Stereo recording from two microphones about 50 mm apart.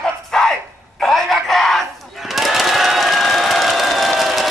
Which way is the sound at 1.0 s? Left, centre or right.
Centre.